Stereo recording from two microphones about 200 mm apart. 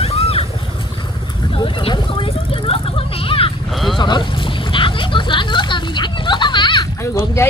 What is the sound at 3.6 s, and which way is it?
Livestock, centre (ahead or behind).